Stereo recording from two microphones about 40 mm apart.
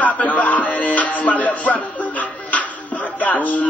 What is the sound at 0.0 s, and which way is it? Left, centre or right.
Music, left.